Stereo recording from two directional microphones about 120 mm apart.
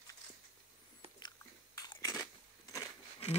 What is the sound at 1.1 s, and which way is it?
Biting, 35° left (ahead or behind).